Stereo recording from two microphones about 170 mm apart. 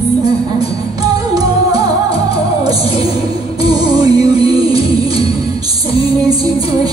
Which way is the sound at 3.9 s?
20° right (ahead or behind).